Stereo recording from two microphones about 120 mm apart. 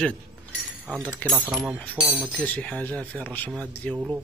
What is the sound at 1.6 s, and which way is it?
Speech, 5° right (ahead or behind).